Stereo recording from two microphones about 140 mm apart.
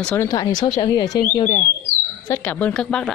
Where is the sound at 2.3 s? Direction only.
10° left (ahead or behind).